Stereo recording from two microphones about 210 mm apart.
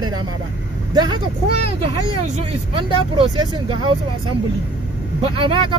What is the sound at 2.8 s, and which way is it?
Speech, 25° right (ahead or behind).